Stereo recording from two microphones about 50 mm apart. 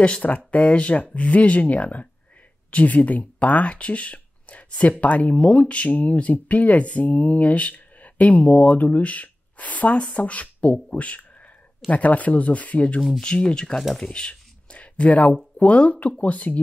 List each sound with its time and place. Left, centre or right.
0.0 s speech: left
13.2 s speech: centre
13.9 s a sound: centre; by 15.3 s left
15.5 s speech: left